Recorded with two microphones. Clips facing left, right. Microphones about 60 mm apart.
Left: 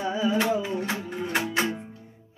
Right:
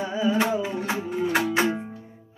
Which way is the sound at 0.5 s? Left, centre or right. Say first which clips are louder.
Even; centre.